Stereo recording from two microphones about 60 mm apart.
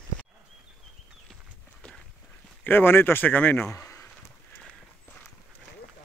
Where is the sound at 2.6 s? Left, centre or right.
Left.